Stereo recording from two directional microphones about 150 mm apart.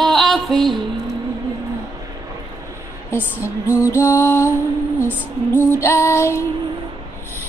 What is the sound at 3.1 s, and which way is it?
Speech, 15° left (ahead or behind).